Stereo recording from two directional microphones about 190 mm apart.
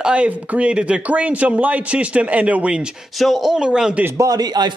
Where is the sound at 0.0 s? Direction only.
5° right (ahead or behind).